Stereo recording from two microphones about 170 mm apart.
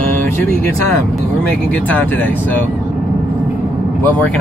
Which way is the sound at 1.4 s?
10° left (ahead or behind).